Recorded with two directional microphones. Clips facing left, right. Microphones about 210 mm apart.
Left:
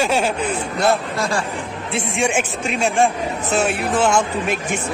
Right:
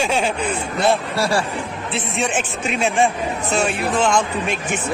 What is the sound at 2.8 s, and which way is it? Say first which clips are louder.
Speech: left 1 dB; centre (ahead or behind).